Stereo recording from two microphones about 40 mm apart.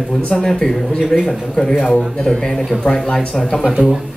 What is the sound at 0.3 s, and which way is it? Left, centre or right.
Speech, centre.